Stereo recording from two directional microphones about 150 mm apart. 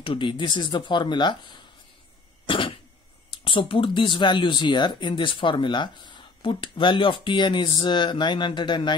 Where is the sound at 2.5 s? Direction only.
35° left (ahead or behind).